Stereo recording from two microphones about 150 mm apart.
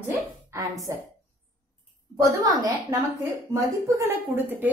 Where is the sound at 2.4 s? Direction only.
20° right (ahead or behind).